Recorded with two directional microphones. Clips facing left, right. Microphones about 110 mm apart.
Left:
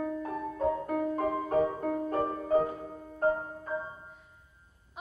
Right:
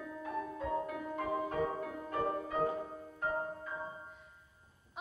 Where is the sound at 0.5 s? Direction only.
40° left (ahead or behind).